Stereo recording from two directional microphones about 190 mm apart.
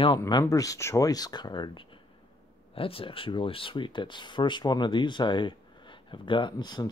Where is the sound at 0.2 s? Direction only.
20° left (ahead or behind).